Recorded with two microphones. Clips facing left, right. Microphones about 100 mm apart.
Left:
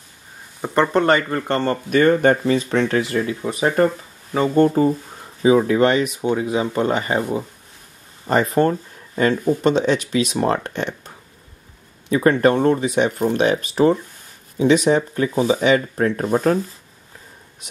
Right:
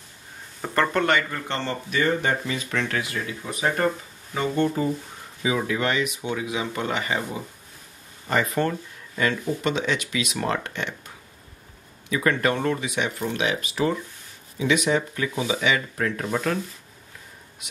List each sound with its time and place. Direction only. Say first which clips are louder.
0.6 s speech: left 5 dB; 20° left (ahead or behind)
1.0 s speech: left 6 dB; 40° left (ahead or behind)
2.7 s speech: left 8 dB; 30° left (ahead or behind)
8.3 s speech: left 7 dB; 35° left (ahead or behind)